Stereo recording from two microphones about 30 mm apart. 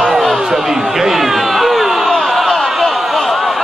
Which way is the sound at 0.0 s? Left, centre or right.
Centre.